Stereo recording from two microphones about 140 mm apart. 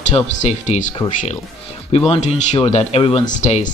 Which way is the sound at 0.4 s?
55° left (ahead or behind).